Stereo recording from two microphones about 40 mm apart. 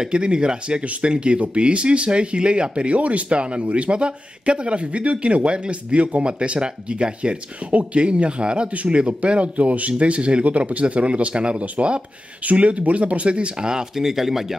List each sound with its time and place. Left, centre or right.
0.0 s speech: right
13.9 s speech: centre